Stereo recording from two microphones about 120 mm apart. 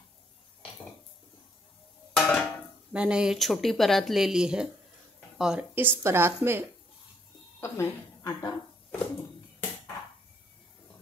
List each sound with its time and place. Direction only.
2.1 s a sound: 5° left (ahead or behind)
2.9 s speech: 10° right (ahead or behind)
5.8 s a woman's voice: 20° right (ahead or behind)
7.6 s speech: 25° left (ahead or behind)